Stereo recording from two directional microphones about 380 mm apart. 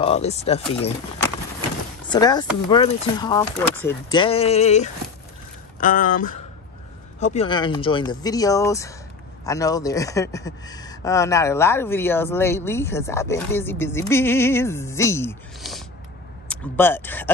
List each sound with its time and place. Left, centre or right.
0.0 s speech: centre
2.0 s speech: centre